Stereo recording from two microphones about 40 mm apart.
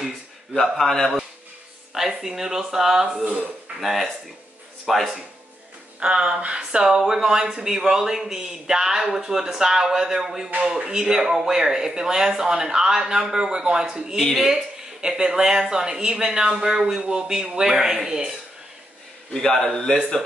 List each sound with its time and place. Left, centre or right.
0.6 s a man's voice: centre
2.0 s speech: centre
5.9 s speech: right
19.3 s a man's voice: centre